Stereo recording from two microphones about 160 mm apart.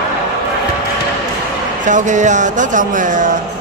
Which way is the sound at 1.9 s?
50° right (ahead or behind).